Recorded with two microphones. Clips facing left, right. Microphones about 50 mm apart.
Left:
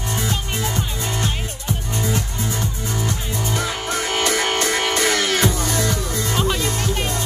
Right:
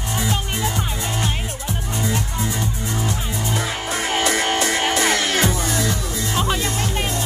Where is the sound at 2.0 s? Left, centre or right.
Centre.